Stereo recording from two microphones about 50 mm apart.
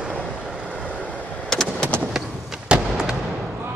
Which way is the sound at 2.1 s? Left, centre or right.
Centre.